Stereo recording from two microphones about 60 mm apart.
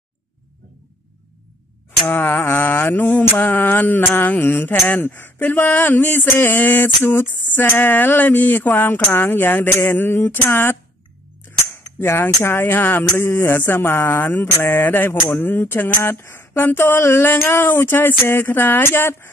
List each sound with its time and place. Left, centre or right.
2.0 s speech: left